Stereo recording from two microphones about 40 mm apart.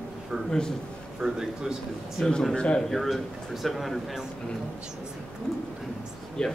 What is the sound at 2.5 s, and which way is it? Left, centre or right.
Speech, left.